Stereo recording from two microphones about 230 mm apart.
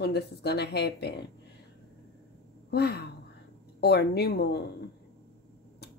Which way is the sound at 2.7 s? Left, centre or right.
Left.